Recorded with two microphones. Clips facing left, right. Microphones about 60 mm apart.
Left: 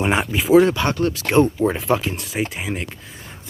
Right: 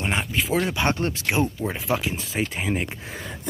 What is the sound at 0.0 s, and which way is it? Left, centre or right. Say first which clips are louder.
Speech: left 5 dB; centre.